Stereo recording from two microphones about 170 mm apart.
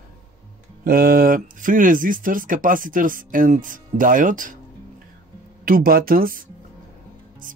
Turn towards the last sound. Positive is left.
turn(degrees=-60)  # may be behind; listen again after turning